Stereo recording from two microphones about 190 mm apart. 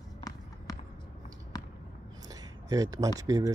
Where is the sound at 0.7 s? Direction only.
20° left (ahead or behind).